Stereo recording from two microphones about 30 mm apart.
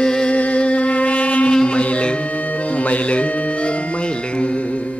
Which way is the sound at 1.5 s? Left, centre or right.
Left.